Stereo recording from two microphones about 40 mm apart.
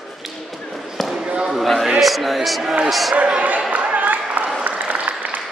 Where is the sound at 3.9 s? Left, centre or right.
Right.